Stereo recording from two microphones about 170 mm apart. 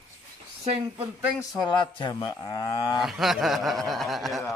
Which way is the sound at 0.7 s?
35° right (ahead or behind).